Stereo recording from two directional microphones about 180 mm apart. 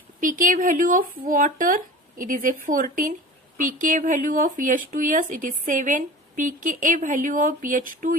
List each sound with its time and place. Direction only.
0.2 s speech: 50° right (ahead or behind)